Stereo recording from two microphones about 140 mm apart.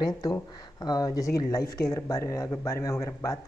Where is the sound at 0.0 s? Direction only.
25° left (ahead or behind).